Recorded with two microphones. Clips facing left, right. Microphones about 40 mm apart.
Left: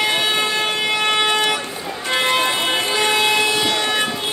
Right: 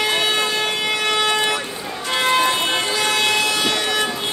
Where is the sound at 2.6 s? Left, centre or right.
Centre.